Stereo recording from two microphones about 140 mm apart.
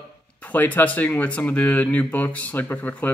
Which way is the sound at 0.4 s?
10° left (ahead or behind).